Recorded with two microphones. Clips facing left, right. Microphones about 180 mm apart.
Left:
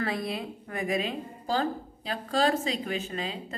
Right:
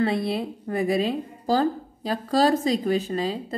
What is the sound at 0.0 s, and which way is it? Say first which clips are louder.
A woman's voice: right 7 dB; 30° right (ahead or behind).